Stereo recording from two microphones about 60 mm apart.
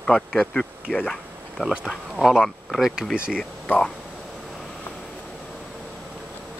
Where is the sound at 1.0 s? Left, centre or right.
Centre.